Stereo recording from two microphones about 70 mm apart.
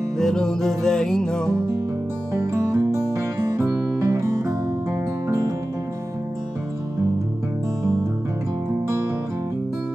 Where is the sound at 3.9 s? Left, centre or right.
Right.